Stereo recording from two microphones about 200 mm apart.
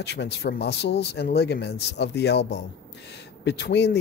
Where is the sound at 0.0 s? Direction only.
60° left (ahead or behind).